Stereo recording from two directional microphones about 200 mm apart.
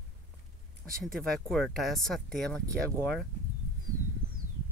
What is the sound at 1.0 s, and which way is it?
Speech, centre (ahead or behind).